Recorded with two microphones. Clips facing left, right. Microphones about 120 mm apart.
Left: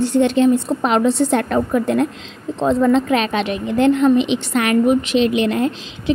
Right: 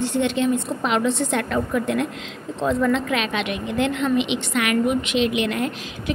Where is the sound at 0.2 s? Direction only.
40° left (ahead or behind).